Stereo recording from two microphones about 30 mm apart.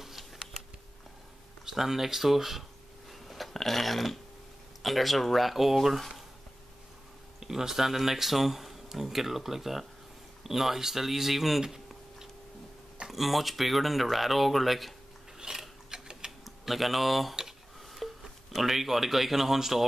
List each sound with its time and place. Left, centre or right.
0.0 s a sound: centre
1.7 s speech: centre
3.1 s a sound: centre
3.5 s speech: centre
5.9 s speech: centre
7.3 s speech: centre
13.1 s speech: centre
15.3 s mechanisms: centre
15.9 s tick-tock: right
16.3 s speech: centre